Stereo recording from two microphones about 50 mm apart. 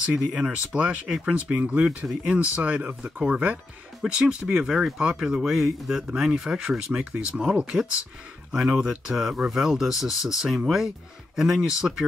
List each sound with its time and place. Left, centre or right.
0.1 s speech: centre
1.5 s speech: right
4.0 s speech: centre